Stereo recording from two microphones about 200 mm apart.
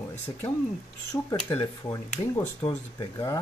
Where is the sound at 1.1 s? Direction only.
Centre (ahead or behind).